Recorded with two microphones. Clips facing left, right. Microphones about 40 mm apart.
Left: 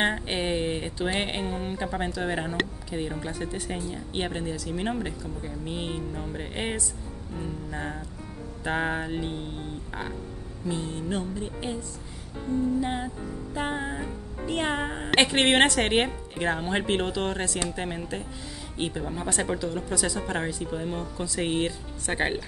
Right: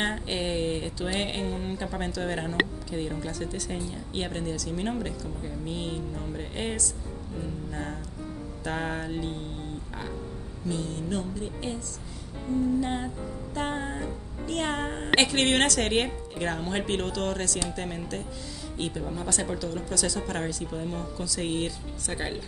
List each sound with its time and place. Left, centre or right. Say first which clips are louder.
0.0 s speech: left 3 dB; centre
12.8 s speech: left 1 dB; centre; by 22.4 s left